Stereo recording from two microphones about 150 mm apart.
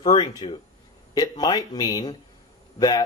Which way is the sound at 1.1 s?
25° left (ahead or behind).